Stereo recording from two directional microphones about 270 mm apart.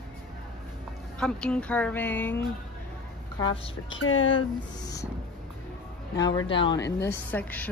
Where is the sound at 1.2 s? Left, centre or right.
Centre.